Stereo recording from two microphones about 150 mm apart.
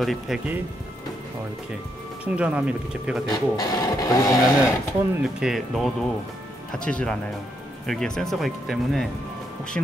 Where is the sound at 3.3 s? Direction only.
25° left (ahead or behind).